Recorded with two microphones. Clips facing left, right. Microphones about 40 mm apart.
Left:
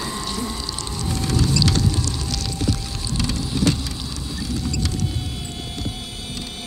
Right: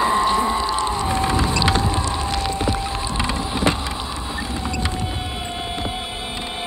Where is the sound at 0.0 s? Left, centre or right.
Right.